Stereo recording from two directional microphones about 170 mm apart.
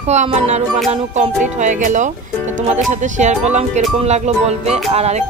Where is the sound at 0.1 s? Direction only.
40° right (ahead or behind).